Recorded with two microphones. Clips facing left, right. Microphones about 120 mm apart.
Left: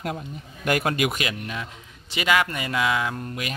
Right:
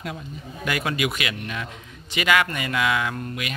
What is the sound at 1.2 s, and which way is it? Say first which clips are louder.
A man's voice: even; 25° left (ahead or behind).